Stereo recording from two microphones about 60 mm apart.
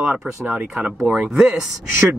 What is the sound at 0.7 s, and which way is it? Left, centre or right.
Speech, centre.